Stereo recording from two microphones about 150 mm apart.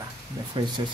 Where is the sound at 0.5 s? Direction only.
30° right (ahead or behind).